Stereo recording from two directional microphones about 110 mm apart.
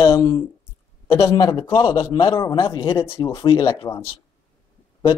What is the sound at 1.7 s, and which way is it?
Speech, 50° left (ahead or behind).